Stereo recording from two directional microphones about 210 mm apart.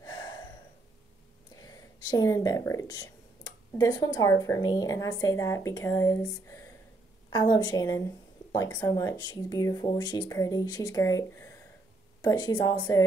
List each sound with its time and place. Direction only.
0.0 s gasp: 20° left (ahead or behind)
2.0 s a woman's voice: 15° left (ahead or behind)